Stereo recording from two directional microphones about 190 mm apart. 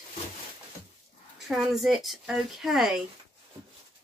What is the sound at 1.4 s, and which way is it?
Speech, centre (ahead or behind).